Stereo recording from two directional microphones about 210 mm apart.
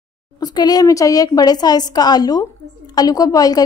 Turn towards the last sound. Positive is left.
turn(degrees=15)  # may be behind; listen again after turning